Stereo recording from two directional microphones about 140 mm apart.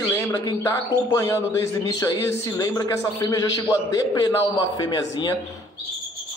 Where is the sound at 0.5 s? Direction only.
20° left (ahead or behind).